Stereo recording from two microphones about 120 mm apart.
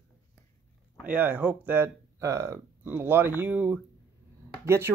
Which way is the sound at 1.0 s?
15° right (ahead or behind).